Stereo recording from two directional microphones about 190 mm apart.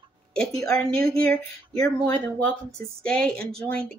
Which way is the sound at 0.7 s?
5° left (ahead or behind).